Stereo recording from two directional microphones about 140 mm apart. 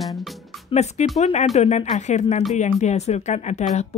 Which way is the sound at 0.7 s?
55° left (ahead or behind).